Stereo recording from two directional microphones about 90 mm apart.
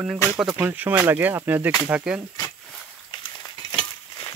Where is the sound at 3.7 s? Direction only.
65° left (ahead or behind).